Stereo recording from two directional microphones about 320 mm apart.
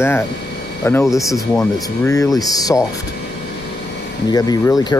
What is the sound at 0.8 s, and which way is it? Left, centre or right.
Speech, centre.